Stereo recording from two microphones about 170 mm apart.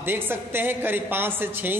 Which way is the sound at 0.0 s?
15° right (ahead or behind).